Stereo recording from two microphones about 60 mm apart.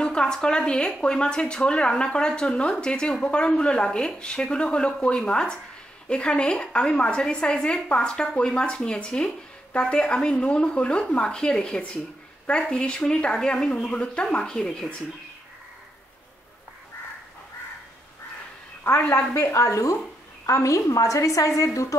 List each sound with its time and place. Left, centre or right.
0.0 s speech: centre
18.9 s a woman's voice: left
19.5 s a woman's voice: left